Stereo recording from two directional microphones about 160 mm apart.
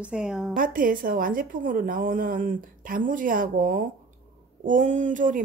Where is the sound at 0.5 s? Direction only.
60° right (ahead or behind).